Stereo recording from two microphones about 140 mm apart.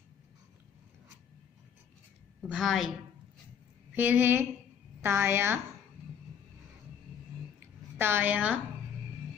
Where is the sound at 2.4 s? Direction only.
5° right (ahead or behind).